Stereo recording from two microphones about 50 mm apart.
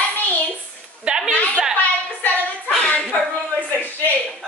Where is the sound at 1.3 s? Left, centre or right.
Left.